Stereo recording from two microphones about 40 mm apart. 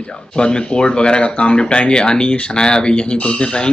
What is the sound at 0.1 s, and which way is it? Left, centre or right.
Speech, centre.